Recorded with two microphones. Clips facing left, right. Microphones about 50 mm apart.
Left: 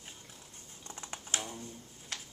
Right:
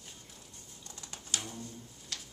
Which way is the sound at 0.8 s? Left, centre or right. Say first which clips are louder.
Left 5 dB; left.